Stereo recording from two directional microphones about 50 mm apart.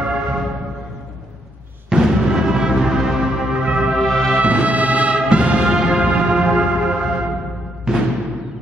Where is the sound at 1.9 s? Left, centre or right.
Centre.